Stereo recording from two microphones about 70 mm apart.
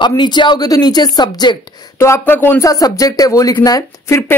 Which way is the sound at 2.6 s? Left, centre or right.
Left.